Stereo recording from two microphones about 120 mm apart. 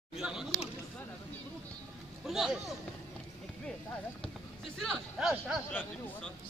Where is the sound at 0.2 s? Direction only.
5° right (ahead or behind).